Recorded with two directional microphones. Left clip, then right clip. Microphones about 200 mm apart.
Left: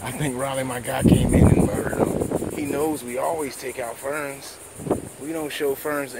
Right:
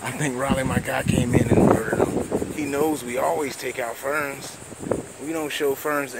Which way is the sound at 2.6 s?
5° right (ahead or behind).